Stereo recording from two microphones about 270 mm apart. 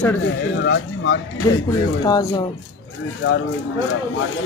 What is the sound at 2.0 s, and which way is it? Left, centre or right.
Speech, centre.